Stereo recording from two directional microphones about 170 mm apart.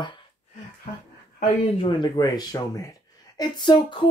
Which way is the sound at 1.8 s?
25° left (ahead or behind).